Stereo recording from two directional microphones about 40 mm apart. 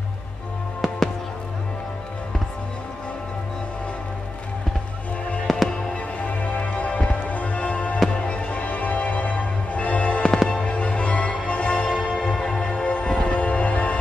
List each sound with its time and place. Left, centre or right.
0.7 s music: centre
5.5 s music: centre
5.9 s music: left
10.2 s music: centre
10.6 s music: left
12.2 s music: centre
12.8 s music: left